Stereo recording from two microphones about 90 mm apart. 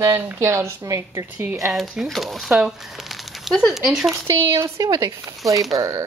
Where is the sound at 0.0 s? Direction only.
25° right (ahead or behind).